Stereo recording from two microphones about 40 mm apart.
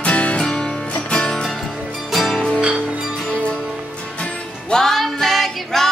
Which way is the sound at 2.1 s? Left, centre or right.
Centre.